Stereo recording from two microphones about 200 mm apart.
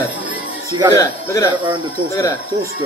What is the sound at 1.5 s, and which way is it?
Speech, 25° right (ahead or behind).